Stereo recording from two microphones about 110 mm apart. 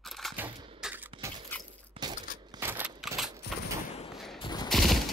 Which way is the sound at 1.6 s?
40° right (ahead or behind).